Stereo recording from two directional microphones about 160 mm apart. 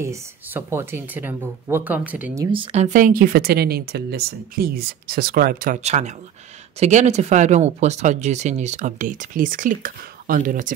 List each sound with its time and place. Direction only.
0.0 s speech: 15° right (ahead or behind)
2.5 s speech: 40° right (ahead or behind); by 5.8 s 65° right (ahead or behind)
5.8 s speech: 45° right (ahead or behind)